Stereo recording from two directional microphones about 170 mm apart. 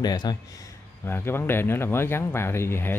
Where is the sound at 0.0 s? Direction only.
25° left (ahead or behind).